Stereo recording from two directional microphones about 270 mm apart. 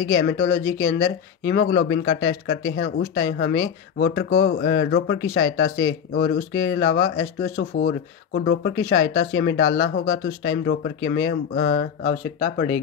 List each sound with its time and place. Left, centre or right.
0.2 s speech: left
7.4 s speech: left